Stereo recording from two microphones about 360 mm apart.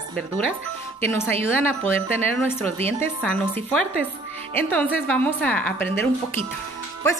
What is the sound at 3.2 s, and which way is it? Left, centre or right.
A woman's voice, centre.